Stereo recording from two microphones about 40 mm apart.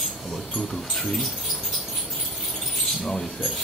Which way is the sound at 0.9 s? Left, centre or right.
Centre.